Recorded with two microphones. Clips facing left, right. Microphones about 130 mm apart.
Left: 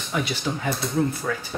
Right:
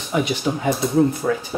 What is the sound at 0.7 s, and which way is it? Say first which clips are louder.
Speech: right 8 dB; centre (ahead or behind).